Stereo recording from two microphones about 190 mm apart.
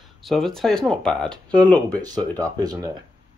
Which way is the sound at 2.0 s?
20° right (ahead or behind).